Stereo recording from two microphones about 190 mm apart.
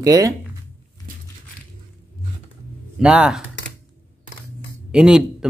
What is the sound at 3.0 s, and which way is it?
Speech, 5° right (ahead or behind).